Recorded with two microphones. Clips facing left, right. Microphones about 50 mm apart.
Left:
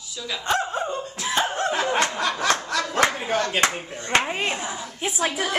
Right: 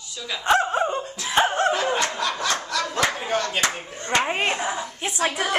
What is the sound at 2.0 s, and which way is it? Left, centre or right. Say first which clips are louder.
Snicker: left 1 dB; centre.